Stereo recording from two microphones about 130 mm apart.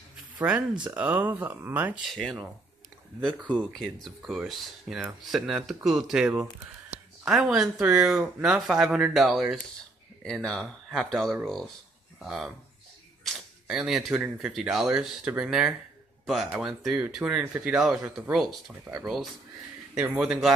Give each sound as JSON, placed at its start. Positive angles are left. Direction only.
{"t": 0.4, "sound": "speech", "side_deg": -10}
{"t": 2.0, "sound": "speech", "side_deg": 0}
{"t": 18.9, "sound": "speech", "side_deg": -20}
{"t": 20.0, "sound": "speech", "side_deg": -5}